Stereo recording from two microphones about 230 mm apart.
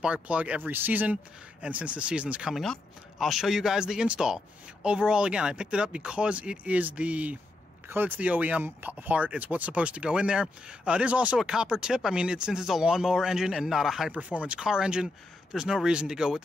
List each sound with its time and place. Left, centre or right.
0.0 s speech: centre